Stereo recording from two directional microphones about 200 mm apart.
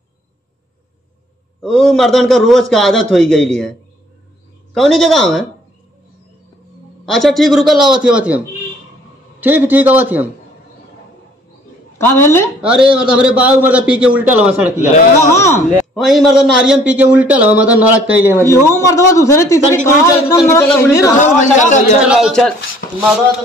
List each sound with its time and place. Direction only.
1.6 s a man's voice: centre (ahead or behind)
4.7 s a man's voice: centre (ahead or behind)
7.1 s a man's voice: centre (ahead or behind)
9.4 s a man's voice: 10° right (ahead or behind)
12.0 s a man's voice: 10° left (ahead or behind)
12.6 s a man's voice: 5° right (ahead or behind)
14.8 s a man's voice: 40° left (ahead or behind)
15.3 s a man's voice: 15° left (ahead or behind)
15.9 s a man's voice: centre (ahead or behind)
18.4 s a man's voice: 15° left (ahead or behind)
21.2 s a man's voice: 40° left (ahead or behind)
22.0 s a man's voice: 5° right (ahead or behind)